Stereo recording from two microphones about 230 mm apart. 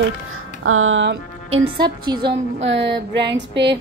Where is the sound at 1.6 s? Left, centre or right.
Centre.